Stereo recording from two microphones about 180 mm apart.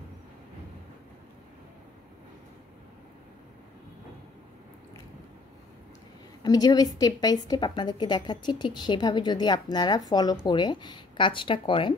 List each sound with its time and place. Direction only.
6.4 s a woman's voice: 20° left (ahead or behind)